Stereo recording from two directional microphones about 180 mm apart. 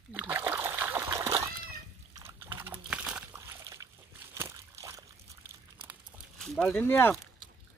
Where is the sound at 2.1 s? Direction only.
15° right (ahead or behind).